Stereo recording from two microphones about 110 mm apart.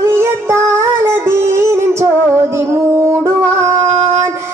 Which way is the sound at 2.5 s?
25° right (ahead or behind).